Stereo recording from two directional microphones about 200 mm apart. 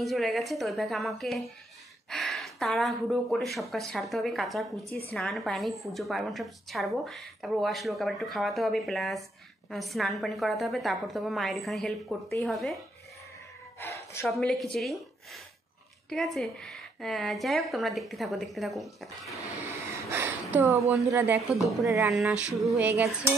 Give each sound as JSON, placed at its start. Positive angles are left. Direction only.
{"t": 0.0, "sound": "a woman's voice", "side_deg": 0}
{"t": 13.7, "sound": "a sound", "side_deg": 15}
{"t": 14.2, "sound": "a woman's voice", "side_deg": 0}
{"t": 19.9, "sound": "a sound", "side_deg": -10}
{"t": 21.8, "sound": "speech", "side_deg": -15}
{"t": 22.1, "sound": "a woman's voice", "side_deg": -5}